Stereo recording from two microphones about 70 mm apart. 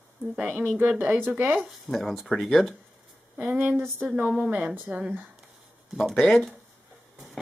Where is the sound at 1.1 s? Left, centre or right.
Right.